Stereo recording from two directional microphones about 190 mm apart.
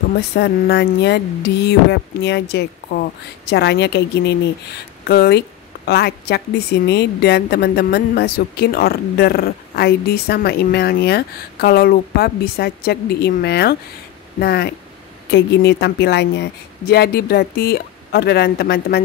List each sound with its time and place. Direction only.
0.4 s speech: 60° left (ahead or behind)